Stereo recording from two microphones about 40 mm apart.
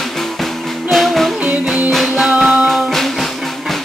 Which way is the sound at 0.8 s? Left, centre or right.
Centre.